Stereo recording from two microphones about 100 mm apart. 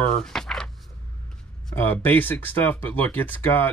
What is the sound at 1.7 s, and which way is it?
Speech, 20° left (ahead or behind).